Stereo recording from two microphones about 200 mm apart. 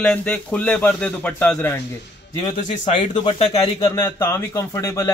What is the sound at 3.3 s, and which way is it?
Speech, 30° left (ahead or behind).